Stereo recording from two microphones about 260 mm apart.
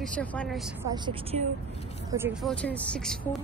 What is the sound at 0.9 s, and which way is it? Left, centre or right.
Speech, centre.